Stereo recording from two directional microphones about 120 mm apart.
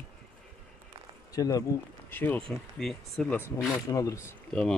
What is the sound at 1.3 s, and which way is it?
Speech, 30° left (ahead or behind).